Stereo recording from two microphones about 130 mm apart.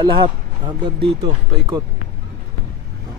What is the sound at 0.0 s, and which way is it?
Speech, 35° right (ahead or behind).